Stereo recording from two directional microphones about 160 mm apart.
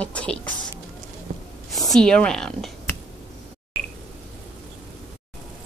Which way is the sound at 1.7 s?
Centre (ahead or behind).